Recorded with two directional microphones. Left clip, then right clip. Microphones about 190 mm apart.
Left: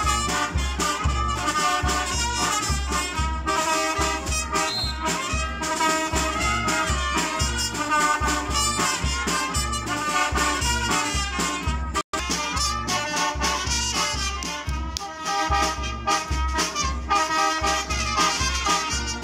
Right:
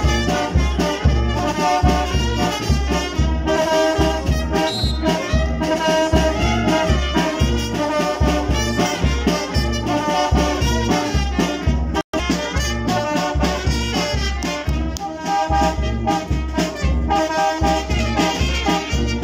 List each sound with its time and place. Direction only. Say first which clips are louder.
0.0 s music: right 3 dB; 40° right (ahead or behind)
1.4 s brass instrument: right 6 dB; 35° right (ahead or behind)
3.4 s music: right 7 dB; 40° right (ahead or behind)
12.8 s music: right 4 dB; 40° right (ahead or behind)
15.2 s music: right 5 dB; 40° right (ahead or behind)